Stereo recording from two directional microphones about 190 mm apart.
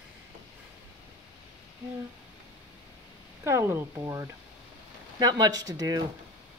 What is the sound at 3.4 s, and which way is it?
Speech, 15° right (ahead or behind).